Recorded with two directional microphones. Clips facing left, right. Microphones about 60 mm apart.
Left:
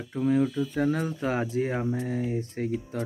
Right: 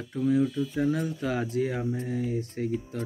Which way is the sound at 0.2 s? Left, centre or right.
Left.